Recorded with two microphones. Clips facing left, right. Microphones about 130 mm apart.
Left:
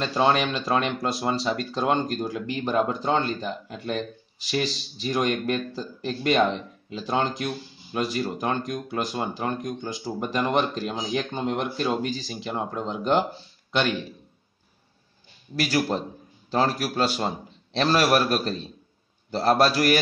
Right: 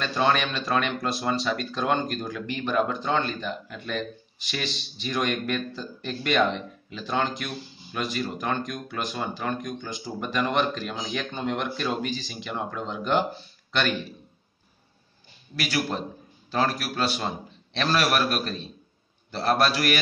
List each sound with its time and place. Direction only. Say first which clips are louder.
0.0 s speech: left 2 dB; 25° left (ahead or behind)
5.0 s speech: left 3 dB; 30° left (ahead or behind)
13.7 s speech: left 2 dB; 20° left (ahead or behind)
15.5 s speech: left 4 dB; 35° left (ahead or behind)